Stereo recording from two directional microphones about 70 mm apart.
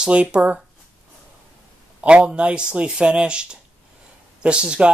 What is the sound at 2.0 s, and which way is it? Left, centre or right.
A man's voice, centre.